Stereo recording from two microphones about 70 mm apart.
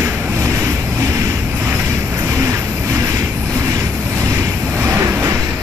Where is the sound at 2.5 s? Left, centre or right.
Right.